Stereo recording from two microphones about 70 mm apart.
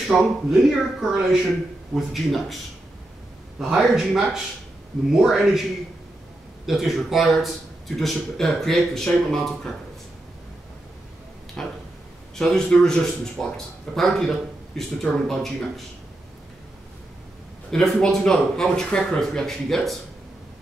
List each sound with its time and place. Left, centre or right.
0.0 s a man's voice: centre
3.5 s a man's voice: centre
6.6 s a man's voice: centre
11.6 s a man's voice: centre
17.6 s a man's voice: centre